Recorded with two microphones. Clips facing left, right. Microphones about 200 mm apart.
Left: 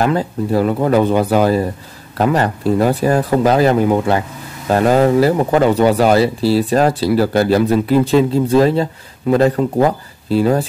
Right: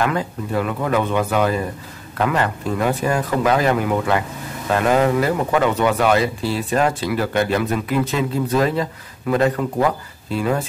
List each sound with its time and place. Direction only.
0.0 s speech: 35° left (ahead or behind)